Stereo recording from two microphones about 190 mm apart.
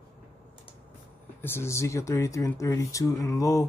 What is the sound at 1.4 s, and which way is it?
Speech, 10° left (ahead or behind).